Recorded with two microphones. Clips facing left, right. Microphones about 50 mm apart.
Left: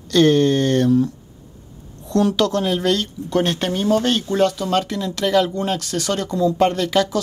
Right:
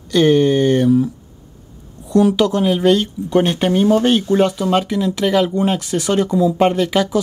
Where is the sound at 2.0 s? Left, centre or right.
Centre.